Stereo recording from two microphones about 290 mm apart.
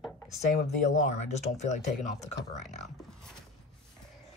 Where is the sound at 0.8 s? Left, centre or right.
Left.